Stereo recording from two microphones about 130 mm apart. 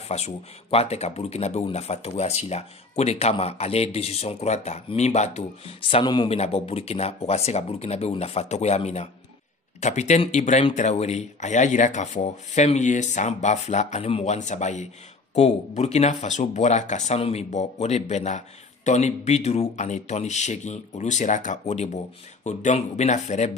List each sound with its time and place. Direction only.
0.1 s speech: 55° left (ahead or behind)